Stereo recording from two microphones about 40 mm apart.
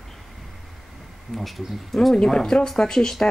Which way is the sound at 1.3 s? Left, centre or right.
Centre.